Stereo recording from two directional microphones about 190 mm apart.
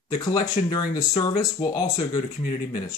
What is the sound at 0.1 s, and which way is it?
Speech, 20° left (ahead or behind).